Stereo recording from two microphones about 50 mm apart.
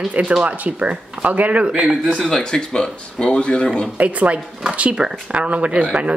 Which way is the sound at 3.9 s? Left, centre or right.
Right.